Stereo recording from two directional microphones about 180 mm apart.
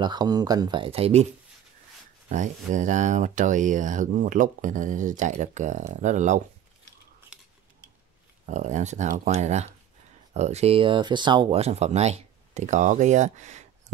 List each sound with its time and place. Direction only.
0.0 s speech: 25° right (ahead or behind)
2.2 s speech: 45° right (ahead or behind)
8.5 s speech: 40° right (ahead or behind)